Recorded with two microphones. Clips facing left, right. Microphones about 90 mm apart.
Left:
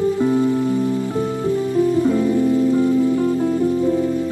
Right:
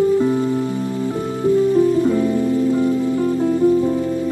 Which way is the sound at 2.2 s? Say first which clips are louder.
Left 1 dB; 20° right (ahead or behind).